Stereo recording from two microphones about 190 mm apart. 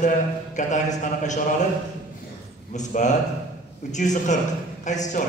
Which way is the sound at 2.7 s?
40° left (ahead or behind).